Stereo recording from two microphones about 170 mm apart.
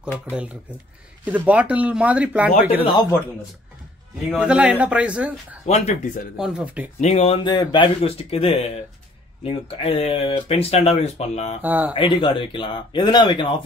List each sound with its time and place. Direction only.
1.2 s speech: 10° right (ahead or behind)
2.8 s speech: 25° left (ahead or behind)
4.3 s speech: 5° right (ahead or behind)
5.7 s speech: 40° left (ahead or behind)
6.3 s speech: 5° right (ahead or behind)
7.0 s speech: 40° left (ahead or behind)
11.6 s speech: 10° right (ahead or behind)
11.9 s speech: 30° left (ahead or behind)